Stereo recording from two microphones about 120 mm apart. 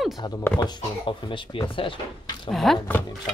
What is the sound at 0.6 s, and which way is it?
Speech, 40° left (ahead or behind).